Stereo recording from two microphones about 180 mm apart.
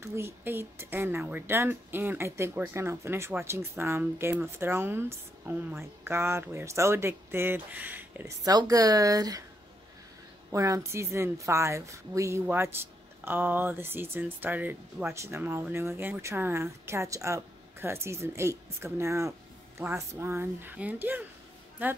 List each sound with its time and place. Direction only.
0.0 s speech: 15° right (ahead or behind)
10.5 s speech: 20° right (ahead or behind)